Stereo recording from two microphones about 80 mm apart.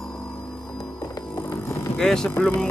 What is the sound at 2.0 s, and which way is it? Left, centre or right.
Speech, centre.